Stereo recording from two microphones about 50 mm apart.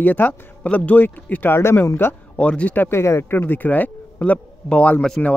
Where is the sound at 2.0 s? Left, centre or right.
Left.